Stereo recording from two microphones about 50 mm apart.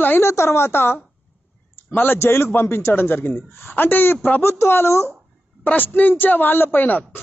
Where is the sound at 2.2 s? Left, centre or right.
Left.